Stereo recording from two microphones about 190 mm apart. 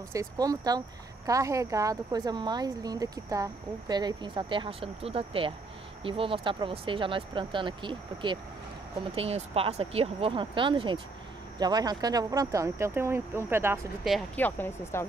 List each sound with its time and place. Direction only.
0.1 s speech: 15° right (ahead or behind)
14.0 s speech: centre (ahead or behind)
14.4 s speech: 10° left (ahead or behind)